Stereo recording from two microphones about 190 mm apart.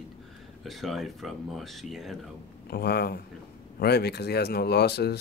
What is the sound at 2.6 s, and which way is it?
Speech, 55° left (ahead or behind).